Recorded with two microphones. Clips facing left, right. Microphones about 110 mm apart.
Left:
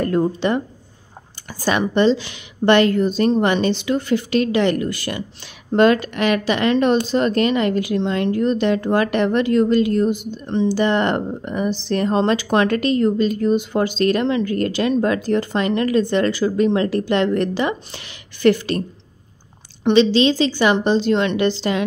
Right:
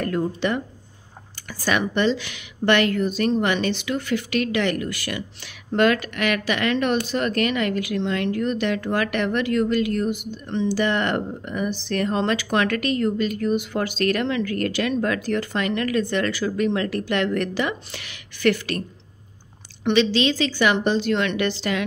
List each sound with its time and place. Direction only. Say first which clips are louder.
0.0 s a woman's voice: left 5 dB; 30° left (ahead or behind)